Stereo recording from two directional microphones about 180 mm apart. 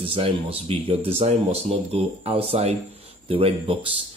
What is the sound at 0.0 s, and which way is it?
Speech, 30° right (ahead or behind).